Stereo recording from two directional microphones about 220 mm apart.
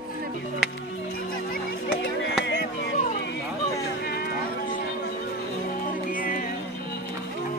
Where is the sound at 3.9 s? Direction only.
45° left (ahead or behind).